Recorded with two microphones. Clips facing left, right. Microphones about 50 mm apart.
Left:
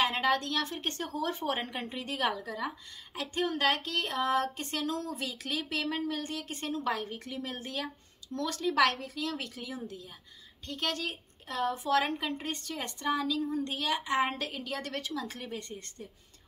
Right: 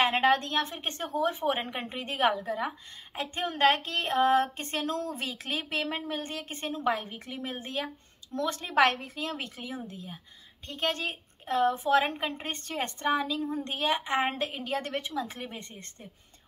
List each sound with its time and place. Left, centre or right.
0.0 s speech: right